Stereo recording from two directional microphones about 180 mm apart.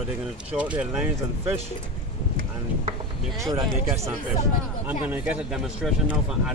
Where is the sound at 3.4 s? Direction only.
20° right (ahead or behind).